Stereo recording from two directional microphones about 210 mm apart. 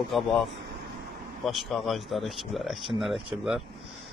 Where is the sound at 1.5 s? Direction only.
Centre (ahead or behind).